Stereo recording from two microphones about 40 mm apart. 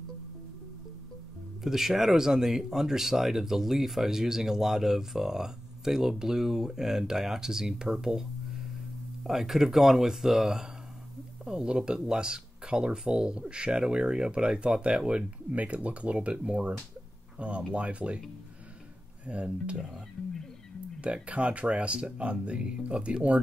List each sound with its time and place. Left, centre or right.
1.6 s speech: centre
11.4 s speech: right
19.2 s speech: right
21.0 s speech: right